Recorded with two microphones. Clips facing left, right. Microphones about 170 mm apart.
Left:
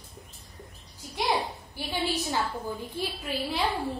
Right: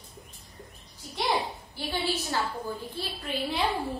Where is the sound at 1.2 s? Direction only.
15° left (ahead or behind).